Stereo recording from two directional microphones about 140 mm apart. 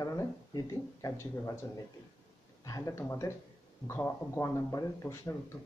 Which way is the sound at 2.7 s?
25° left (ahead or behind).